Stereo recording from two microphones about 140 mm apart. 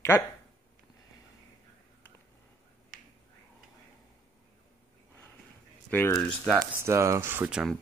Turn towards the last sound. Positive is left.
turn(degrees=-5)  # may be behind; listen again after turning